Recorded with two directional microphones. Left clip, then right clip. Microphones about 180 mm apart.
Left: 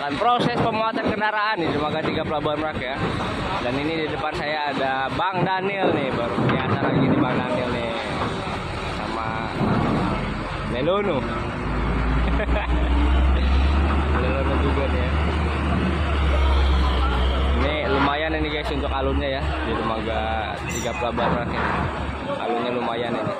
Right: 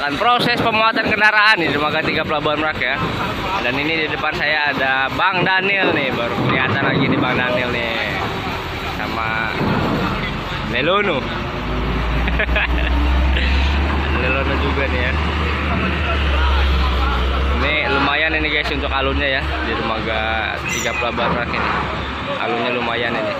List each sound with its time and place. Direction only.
0.2 s speech: 10° left (ahead or behind)
4.5 s speech: 15° left (ahead or behind)
10.8 s speech: 10° left (ahead or behind)
17.6 s a sound: 20° left (ahead or behind)